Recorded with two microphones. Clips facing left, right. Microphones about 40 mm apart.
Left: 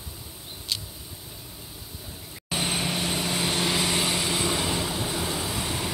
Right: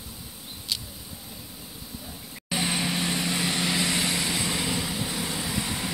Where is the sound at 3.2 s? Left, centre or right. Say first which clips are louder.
Even; centre.